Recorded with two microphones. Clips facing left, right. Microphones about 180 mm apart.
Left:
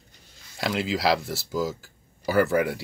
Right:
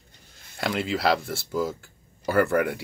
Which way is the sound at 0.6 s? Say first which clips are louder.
Even; centre (ahead or behind).